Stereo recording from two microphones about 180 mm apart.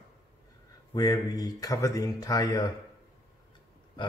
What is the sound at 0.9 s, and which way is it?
Speech, 20° left (ahead or behind).